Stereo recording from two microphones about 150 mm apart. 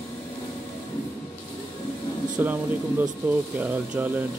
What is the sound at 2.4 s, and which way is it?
Speech, 15° right (ahead or behind).